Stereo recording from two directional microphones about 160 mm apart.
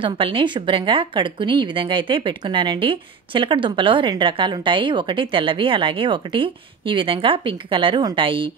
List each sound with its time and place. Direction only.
0.0 s a woman's voice: 35° right (ahead or behind)